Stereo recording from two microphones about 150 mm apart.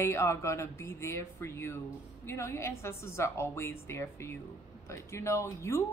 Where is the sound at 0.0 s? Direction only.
20° left (ahead or behind).